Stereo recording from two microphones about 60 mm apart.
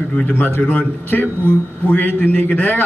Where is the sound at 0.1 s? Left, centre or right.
Left.